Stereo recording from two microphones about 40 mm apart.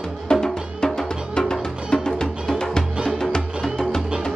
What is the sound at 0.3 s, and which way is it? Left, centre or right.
Music, centre.